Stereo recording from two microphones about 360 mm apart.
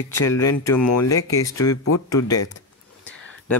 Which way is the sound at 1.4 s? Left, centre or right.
Centre.